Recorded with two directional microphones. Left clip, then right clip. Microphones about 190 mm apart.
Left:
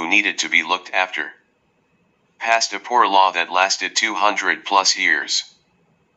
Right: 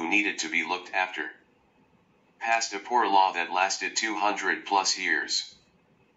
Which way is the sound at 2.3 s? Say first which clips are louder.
Left 8 dB; 25° left (ahead or behind).